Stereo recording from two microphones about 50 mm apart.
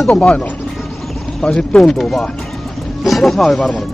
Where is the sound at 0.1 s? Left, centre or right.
Left; by 3.6 s centre.